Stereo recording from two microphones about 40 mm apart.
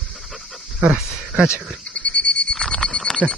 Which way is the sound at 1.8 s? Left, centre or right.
Left.